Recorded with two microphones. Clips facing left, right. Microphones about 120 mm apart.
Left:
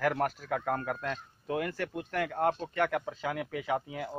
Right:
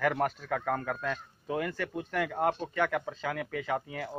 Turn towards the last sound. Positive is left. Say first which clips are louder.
# left 1 dB
turn(degrees=5)  # may be behind; listen again after turning